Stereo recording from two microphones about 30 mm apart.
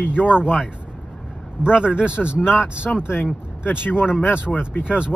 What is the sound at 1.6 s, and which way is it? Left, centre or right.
Speech, right.